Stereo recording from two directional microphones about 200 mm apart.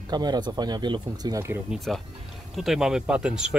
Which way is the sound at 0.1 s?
20° right (ahead or behind).